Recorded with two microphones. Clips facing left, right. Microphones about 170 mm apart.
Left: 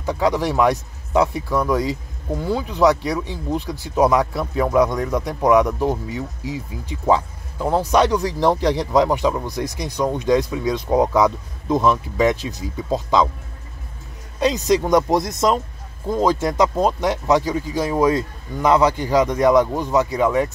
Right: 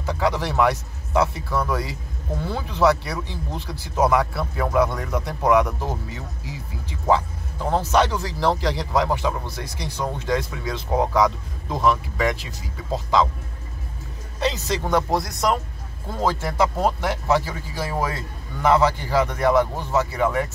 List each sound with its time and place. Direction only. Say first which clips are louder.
0.0 s speech: left 4 dB; 15° left (ahead or behind)
14.4 s speech: left 7 dB; 15° left (ahead or behind)